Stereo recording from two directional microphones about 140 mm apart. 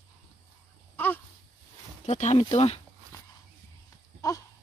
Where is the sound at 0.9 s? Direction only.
15° left (ahead or behind).